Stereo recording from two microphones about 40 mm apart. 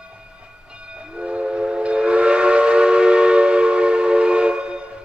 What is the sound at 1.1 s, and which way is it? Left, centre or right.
Train, right.